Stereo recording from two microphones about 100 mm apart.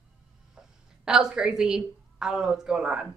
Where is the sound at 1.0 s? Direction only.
5° right (ahead or behind).